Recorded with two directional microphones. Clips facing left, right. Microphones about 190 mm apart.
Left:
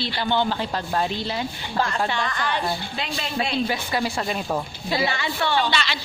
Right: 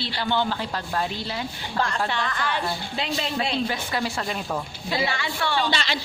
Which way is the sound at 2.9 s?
30° right (ahead or behind).